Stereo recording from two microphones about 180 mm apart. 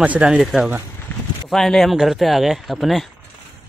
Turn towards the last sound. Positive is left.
turn(degrees=0)  # may be behind; listen again after turning